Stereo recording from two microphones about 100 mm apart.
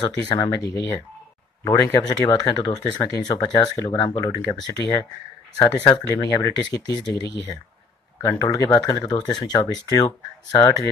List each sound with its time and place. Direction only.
0.0 s speech: 45° left (ahead or behind)
6.0 s speech: 30° left (ahead or behind)
8.6 s speech: 45° left (ahead or behind)